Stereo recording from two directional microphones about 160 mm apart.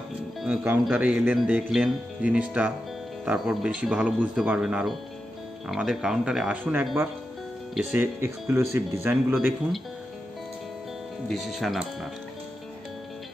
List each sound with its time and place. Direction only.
0.4 s speech: 5° right (ahead or behind)
7.9 s speech: 15° right (ahead or behind)
11.2 s speech: centre (ahead or behind)